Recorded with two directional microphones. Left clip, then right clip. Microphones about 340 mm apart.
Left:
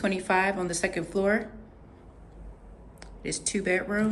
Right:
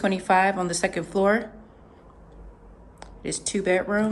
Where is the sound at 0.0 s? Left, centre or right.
Centre.